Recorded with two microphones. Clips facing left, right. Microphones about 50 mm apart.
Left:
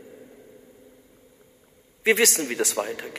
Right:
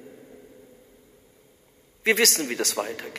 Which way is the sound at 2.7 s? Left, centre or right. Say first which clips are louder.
Left 1 dB; centre.